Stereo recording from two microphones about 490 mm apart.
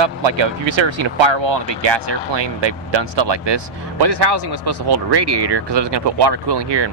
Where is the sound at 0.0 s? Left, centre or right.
Right.